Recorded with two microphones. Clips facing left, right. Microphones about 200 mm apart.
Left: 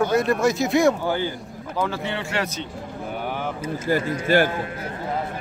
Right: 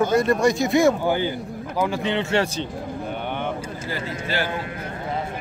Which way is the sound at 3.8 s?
50° left (ahead or behind).